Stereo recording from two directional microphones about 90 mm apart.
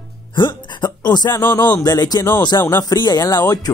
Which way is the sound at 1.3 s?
25° left (ahead or behind).